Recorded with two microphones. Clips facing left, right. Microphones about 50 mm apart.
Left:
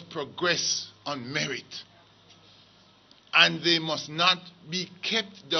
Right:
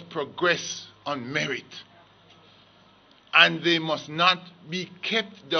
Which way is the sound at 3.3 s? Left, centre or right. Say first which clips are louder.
Right 3 dB; centre.